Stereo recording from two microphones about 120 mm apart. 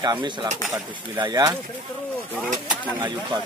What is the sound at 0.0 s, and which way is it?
Speech, 35° right (ahead or behind).